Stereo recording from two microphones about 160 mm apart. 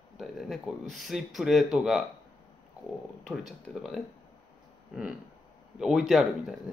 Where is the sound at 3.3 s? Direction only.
Centre (ahead or behind).